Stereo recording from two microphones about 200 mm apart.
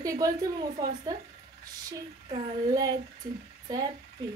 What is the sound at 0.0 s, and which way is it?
A woman's voice, 15° right (ahead or behind).